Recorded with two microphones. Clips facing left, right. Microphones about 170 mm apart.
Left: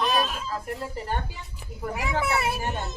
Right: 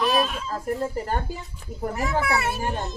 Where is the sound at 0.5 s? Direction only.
45° right (ahead or behind).